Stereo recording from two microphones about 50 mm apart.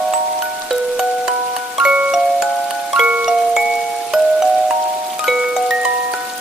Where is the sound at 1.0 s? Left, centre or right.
Centre.